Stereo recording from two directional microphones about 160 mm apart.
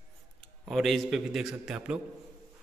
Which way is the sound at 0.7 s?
Centre (ahead or behind).